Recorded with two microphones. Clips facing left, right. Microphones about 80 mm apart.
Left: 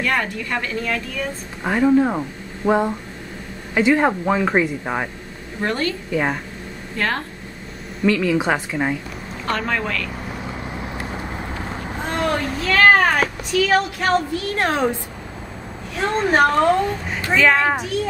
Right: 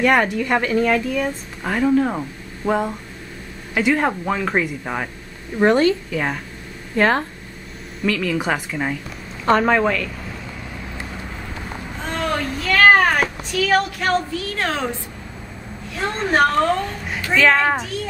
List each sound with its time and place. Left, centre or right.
0.0 s a woman's voice: right
1.6 s speech: centre
5.6 s a woman's voice: right
6.1 s speech: centre
7.0 s a woman's voice: right
8.0 s speech: centre
9.5 s a woman's voice: right
10.8 s vehicle: left
12.1 s vehicle: centre
12.8 s cat: centre
14.5 s a woman's voice: left
16.0 s a child's voice: centre